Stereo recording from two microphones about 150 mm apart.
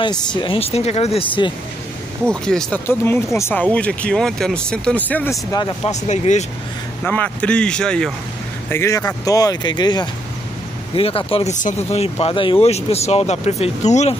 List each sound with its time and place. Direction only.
0.3 s speech: 35° left (ahead or behind)
2.2 s speech: 5° left (ahead or behind); by 5.7 s 20° left (ahead or behind)
5.9 s speech: 50° left (ahead or behind)
7.1 s speech: 10° left (ahead or behind)
8.6 s speech: 15° left (ahead or behind); by 11.5 s 40° left (ahead or behind)
11.5 s speech: 50° left (ahead or behind)